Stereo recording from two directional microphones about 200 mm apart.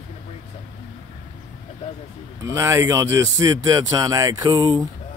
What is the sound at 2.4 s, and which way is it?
Speech, 15° right (ahead or behind).